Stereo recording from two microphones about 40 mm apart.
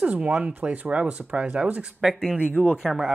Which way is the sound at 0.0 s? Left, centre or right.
Right.